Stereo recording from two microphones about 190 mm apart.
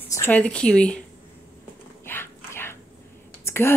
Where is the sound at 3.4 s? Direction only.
15° left (ahead or behind).